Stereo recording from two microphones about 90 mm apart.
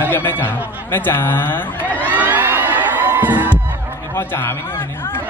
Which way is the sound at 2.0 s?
20° right (ahead or behind).